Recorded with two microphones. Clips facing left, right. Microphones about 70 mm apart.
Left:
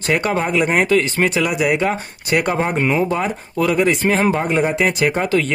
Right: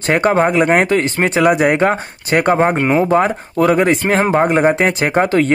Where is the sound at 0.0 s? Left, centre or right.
Right.